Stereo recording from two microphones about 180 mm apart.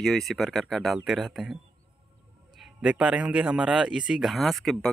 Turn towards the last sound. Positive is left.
turn(degrees=5)  # may be behind; listen again after turning